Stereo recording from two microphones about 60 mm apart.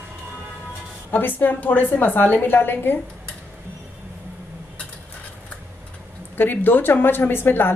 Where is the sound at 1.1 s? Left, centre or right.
Left.